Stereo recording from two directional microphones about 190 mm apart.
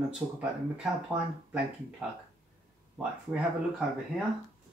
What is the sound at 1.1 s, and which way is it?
Speech, 5° right (ahead or behind).